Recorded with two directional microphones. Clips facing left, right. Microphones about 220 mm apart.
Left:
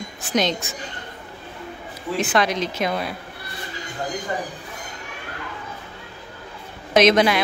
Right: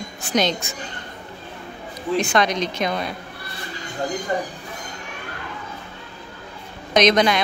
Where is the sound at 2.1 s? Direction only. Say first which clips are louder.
Right 1 dB; 5° left (ahead or behind).